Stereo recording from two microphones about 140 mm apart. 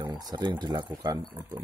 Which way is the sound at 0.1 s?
30° right (ahead or behind).